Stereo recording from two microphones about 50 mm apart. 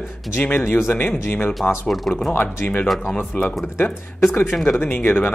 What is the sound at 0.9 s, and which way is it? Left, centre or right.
Speech, left.